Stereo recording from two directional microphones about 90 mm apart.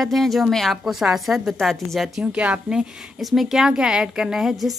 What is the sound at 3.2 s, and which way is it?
A woman's voice, centre (ahead or behind).